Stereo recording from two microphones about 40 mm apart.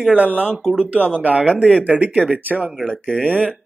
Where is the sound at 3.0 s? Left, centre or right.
Left.